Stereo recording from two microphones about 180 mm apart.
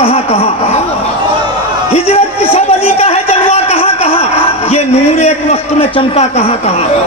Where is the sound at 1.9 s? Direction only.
35° left (ahead or behind).